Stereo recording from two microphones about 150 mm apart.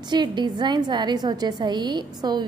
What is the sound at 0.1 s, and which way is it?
A woman's voice, 30° right (ahead or behind).